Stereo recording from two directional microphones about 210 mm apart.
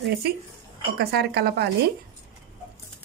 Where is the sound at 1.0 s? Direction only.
50° right (ahead or behind).